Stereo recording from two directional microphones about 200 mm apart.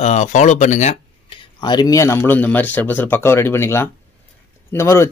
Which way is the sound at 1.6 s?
20° left (ahead or behind).